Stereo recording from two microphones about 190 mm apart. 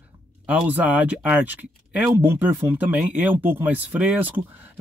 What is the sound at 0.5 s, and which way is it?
Speech, 10° right (ahead or behind).